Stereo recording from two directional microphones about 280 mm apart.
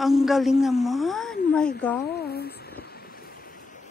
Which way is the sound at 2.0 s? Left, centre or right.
Left.